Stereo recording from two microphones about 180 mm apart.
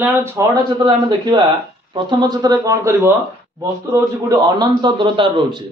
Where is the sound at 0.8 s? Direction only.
25° right (ahead or behind).